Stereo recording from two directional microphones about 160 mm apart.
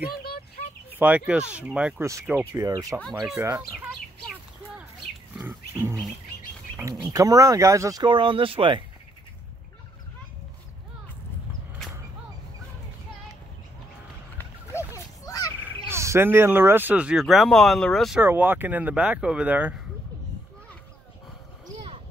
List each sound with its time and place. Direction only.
0.9 s speech: 10° right (ahead or behind)
2.5 s speech: 20° right (ahead or behind)
5.5 s music: 15° right (ahead or behind)
6.8 s speech: 20° right (ahead or behind)
14.4 s a sound: 15° left (ahead or behind)
15.9 s speech: 15° right (ahead or behind); by 18.2 s centre (ahead or behind)
18.2 s speech: 15° right (ahead or behind)